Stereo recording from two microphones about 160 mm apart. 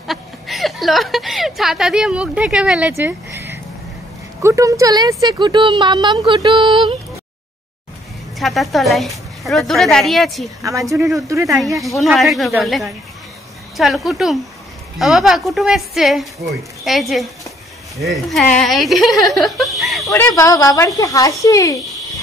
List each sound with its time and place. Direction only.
0.0 s speech: centre (ahead or behind)
2.9 s a sound: 15° right (ahead or behind)
4.4 s speech: 20° right (ahead or behind)
8.4 s a woman's voice: centre (ahead or behind)
10.6 s speech: 20° right (ahead or behind)
11.5 s a woman's voice: centre (ahead or behind)
19.3 s chuckle: centre (ahead or behind)
20.1 s speech: 15° left (ahead or behind)